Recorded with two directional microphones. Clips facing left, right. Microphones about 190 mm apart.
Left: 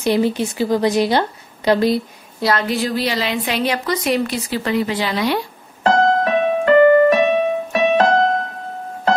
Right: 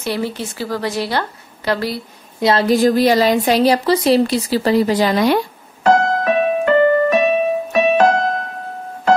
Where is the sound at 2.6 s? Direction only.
45° right (ahead or behind).